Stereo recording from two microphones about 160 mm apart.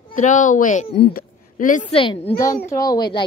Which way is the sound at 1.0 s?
65° left (ahead or behind).